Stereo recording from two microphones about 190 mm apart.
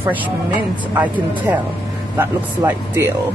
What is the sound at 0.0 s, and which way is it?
Speech, 10° right (ahead or behind).